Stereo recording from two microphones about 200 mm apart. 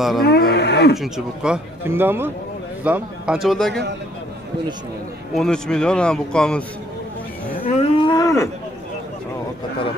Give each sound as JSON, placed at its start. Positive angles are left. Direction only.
{"t": 0.2, "sound": "speech", "side_deg": 55}
{"t": 0.9, "sound": "a man's voice", "side_deg": 0}
{"t": 5.3, "sound": "a man's voice", "side_deg": 5}
{"t": 7.6, "sound": "cattle", "side_deg": 30}